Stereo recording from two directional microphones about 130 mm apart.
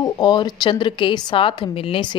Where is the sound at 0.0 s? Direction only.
35° left (ahead or behind).